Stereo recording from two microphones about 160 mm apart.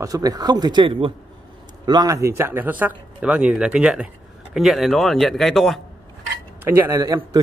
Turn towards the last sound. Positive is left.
turn(degrees=-20)  # may be behind; listen again after turning